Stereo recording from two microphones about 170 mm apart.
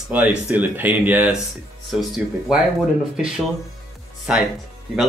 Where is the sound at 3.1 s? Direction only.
5° right (ahead or behind).